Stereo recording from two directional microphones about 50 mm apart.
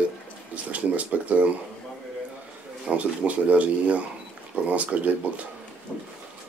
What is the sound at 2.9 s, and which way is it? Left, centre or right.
Speech, right.